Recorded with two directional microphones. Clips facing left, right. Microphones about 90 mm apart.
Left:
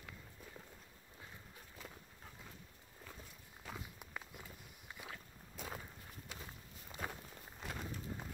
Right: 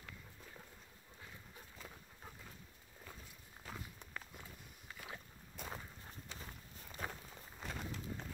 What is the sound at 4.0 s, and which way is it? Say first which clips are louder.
Walk: left 1 dB; 10° left (ahead or behind).